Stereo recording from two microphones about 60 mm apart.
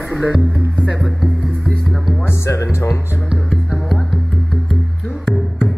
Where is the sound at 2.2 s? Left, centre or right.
Left.